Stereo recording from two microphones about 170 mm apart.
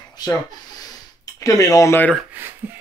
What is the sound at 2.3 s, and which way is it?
Speech, 15° right (ahead or behind).